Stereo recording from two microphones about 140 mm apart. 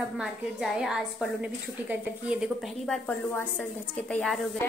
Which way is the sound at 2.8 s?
5° left (ahead or behind).